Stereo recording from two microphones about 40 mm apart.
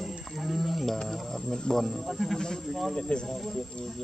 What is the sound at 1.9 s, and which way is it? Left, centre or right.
Speech, centre.